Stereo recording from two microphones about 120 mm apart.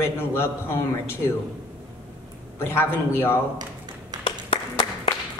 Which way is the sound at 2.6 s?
20° left (ahead or behind).